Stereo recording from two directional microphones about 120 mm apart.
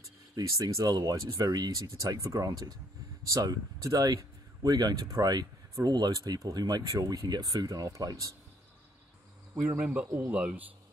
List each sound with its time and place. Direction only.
0.4 s speech: 25° right (ahead or behind)
9.6 s speech: 10° right (ahead or behind)